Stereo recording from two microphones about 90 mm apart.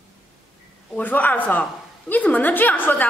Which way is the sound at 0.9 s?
20° left (ahead or behind).